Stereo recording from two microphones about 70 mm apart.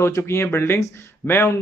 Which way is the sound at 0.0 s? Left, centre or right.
Left.